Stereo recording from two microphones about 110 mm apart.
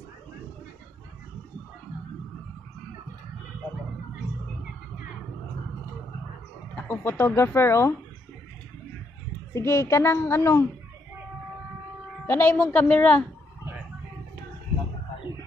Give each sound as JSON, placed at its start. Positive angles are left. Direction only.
{"t": 6.7, "sound": "speech", "side_deg": 15}
{"t": 9.5, "sound": "a woman's voice", "side_deg": 25}
{"t": 12.3, "sound": "a woman's voice", "side_deg": 20}